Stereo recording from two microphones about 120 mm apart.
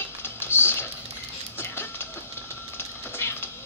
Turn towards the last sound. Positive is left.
turn(degrees=20)  # may be behind; listen again after turning